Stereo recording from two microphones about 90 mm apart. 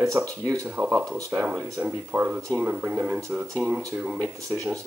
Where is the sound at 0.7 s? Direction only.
15° right (ahead or behind).